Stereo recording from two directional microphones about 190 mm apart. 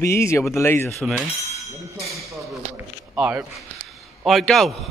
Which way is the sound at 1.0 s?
Centre (ahead or behind).